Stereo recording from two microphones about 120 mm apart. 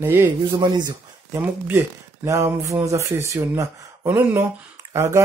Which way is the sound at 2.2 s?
25° right (ahead or behind).